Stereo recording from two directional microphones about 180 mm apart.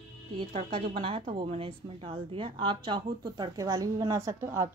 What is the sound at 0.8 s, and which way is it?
Speech, 30° right (ahead or behind).